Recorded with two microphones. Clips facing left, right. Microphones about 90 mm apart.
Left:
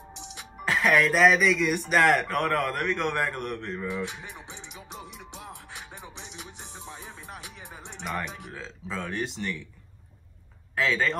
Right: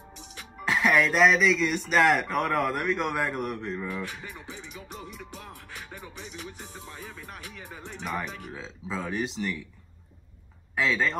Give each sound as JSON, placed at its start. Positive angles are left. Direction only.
{"t": 0.1, "sound": "music", "side_deg": 20}
{"t": 0.7, "sound": "speech", "side_deg": 0}
{"t": 3.8, "sound": "music", "side_deg": 20}
{"t": 8.5, "sound": "speech", "side_deg": -5}
{"t": 10.8, "sound": "speech", "side_deg": 0}